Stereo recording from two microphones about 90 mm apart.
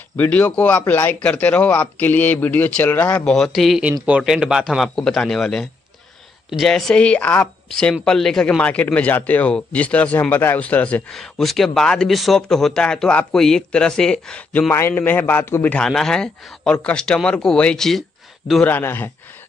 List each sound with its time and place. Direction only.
0.2 s speech: 15° left (ahead or behind)
6.7 s speech: 10° left (ahead or behind)
11.1 s speech: 5° left (ahead or behind)
14.7 s a man's voice: 25° left (ahead or behind)
15.8 s speech: 5° left (ahead or behind)
18.6 s a man's voice: 25° left (ahead or behind)